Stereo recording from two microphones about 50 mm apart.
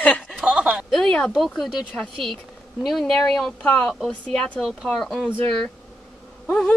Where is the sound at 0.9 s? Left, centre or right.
Centre.